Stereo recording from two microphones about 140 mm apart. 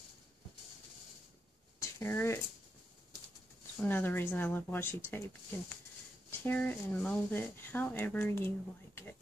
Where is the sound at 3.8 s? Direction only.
15° left (ahead or behind).